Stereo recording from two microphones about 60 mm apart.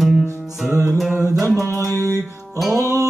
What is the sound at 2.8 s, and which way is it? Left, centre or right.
Music, right.